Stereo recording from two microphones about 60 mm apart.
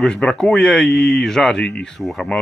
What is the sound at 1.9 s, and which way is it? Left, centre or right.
Speech, centre.